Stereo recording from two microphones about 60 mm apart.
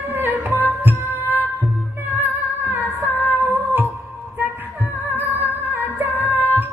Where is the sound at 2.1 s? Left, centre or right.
Right.